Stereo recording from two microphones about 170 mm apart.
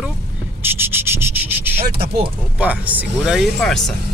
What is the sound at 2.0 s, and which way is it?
Speech, 30° right (ahead or behind).